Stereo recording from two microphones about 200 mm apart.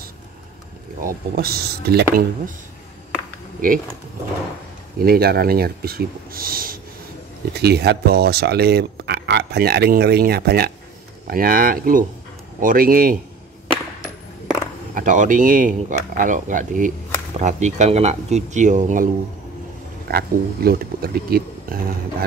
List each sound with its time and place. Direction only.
1.0 s speech: 50° right (ahead or behind)
5.0 s speech: 50° right (ahead or behind)
15.0 s speech: 40° right (ahead or behind)
20.1 s speech: 50° right (ahead or behind)